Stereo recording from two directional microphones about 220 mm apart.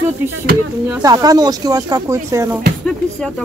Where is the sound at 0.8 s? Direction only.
10° right (ahead or behind).